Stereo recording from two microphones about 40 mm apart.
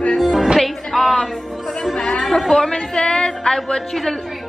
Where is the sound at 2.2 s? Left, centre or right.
Centre.